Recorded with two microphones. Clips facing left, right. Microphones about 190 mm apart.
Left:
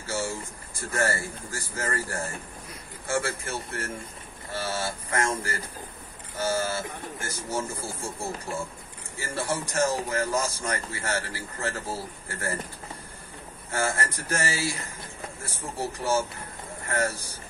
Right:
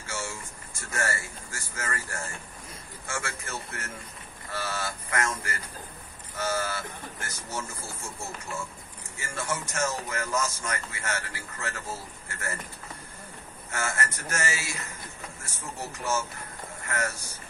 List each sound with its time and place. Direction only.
0.0 s speech: 35° left (ahead or behind)
13.7 s speech: 30° left (ahead or behind)